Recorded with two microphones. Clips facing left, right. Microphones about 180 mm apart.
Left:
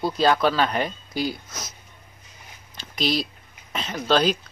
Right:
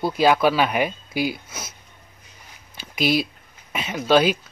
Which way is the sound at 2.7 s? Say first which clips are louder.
Right 3 dB; 10° right (ahead or behind).